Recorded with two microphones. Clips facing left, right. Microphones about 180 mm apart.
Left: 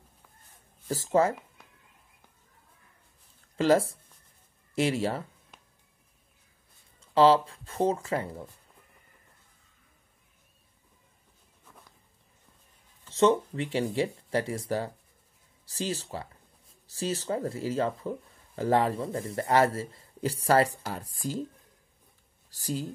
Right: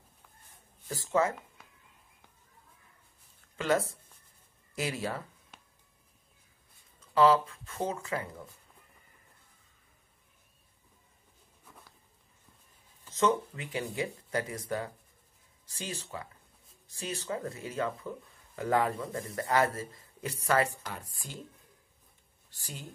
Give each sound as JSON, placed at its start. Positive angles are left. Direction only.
{"t": 0.8, "sound": "speech", "side_deg": 35}
{"t": 3.5, "sound": "speech", "side_deg": 30}
{"t": 7.0, "sound": "speech", "side_deg": 30}
{"t": 13.1, "sound": "speech", "side_deg": 30}
{"t": 15.7, "sound": "speech", "side_deg": 35}
{"t": 22.5, "sound": "speech", "side_deg": 35}